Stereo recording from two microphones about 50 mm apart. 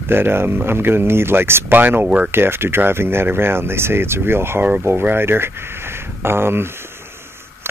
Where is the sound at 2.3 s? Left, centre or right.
Right.